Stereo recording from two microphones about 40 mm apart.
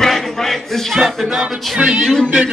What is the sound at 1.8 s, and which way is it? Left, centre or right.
Music, right.